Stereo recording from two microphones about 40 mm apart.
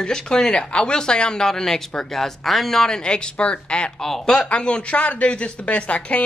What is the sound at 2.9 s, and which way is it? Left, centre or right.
Speech, left.